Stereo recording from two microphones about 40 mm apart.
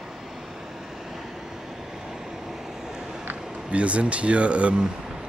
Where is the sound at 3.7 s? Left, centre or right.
Right.